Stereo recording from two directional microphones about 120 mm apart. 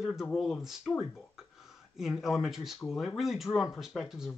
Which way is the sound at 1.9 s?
Centre (ahead or behind).